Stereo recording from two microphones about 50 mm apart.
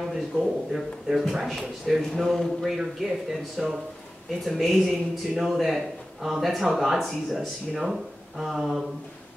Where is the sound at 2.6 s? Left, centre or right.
Centre.